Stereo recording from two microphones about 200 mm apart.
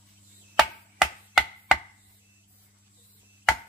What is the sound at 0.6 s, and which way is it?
Chopping, centre (ahead or behind).